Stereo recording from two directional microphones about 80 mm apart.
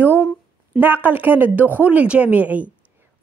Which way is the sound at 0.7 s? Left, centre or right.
Right.